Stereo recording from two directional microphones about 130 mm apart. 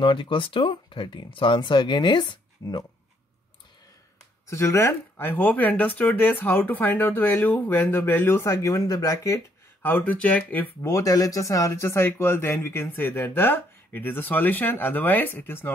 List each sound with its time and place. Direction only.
0.0 s speech: 40° left (ahead or behind)
4.5 s speech: 20° left (ahead or behind)
10.9 s speech: 25° left (ahead or behind)